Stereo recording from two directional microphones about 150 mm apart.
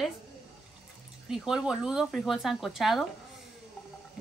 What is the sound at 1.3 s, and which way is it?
Speech, 5° right (ahead or behind).